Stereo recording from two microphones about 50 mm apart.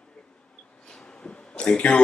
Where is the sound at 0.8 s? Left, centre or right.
Centre.